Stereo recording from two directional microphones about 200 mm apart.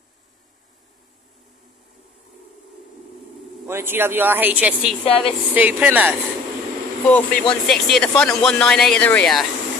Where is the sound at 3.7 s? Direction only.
10° right (ahead or behind).